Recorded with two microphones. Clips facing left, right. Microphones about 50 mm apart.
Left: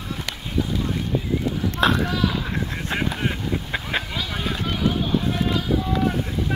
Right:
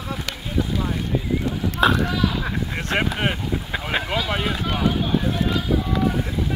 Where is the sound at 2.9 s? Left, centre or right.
Right.